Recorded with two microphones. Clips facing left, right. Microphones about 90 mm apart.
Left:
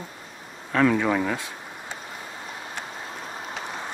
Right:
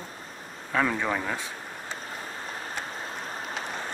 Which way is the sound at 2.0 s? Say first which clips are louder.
Even; 40° right (ahead or behind).